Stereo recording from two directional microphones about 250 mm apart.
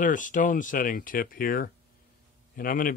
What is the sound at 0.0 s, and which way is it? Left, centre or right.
Speech, left.